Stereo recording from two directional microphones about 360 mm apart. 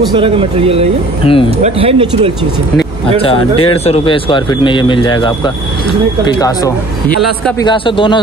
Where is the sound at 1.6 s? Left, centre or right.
Centre.